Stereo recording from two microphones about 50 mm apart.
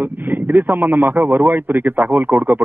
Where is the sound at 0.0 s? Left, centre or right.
Right.